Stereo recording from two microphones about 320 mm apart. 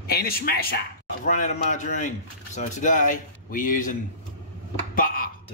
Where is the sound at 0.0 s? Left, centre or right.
Left.